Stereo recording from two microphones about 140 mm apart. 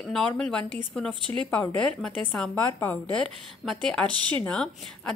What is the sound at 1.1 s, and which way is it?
Speech, 35° right (ahead or behind).